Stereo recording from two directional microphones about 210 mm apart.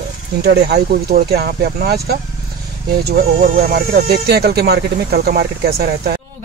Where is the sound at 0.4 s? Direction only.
50° right (ahead or behind).